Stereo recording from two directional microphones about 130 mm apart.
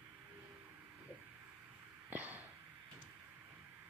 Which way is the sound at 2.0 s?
15° right (ahead or behind).